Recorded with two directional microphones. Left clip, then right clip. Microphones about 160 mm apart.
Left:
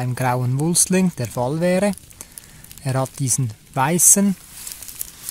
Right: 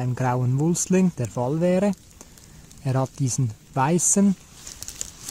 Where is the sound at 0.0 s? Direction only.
20° left (ahead or behind).